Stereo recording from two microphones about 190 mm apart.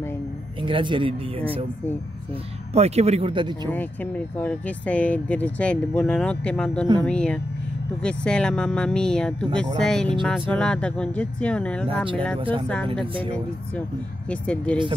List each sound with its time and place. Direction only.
0.6 s speech: 25° right (ahead or behind)
2.7 s speech: 35° right (ahead or behind)
3.7 s speech: 10° left (ahead or behind)
12.4 s speech: 25° right (ahead or behind)
14.3 s speech: 5° left (ahead or behind)